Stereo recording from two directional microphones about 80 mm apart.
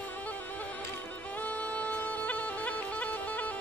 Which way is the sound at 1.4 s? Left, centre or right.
Centre.